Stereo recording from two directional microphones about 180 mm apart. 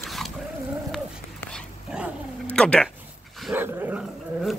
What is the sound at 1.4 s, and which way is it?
Dog, 5° left (ahead or behind).